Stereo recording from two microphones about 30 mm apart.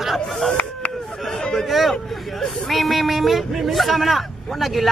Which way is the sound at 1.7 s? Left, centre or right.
Centre.